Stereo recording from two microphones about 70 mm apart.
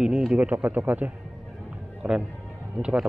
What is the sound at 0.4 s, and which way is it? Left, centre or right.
Mantra, right.